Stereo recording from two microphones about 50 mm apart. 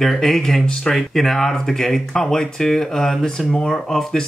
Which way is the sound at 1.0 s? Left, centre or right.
Centre.